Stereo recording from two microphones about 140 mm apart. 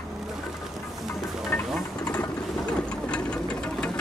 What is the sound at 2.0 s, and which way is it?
Vehicle, 25° left (ahead or behind).